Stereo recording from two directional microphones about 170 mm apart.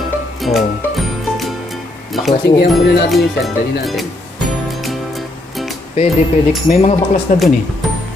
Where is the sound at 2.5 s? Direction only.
85° left.